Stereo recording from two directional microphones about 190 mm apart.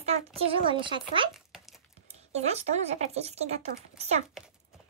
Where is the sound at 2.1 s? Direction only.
35° right (ahead or behind).